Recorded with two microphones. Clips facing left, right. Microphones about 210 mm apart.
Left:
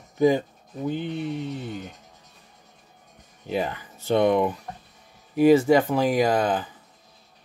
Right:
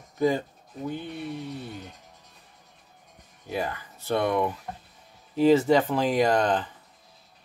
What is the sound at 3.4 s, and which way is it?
Speech, 20° left (ahead or behind).